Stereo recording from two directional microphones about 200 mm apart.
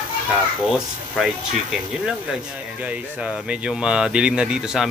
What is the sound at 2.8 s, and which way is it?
Speech, 5° right (ahead or behind).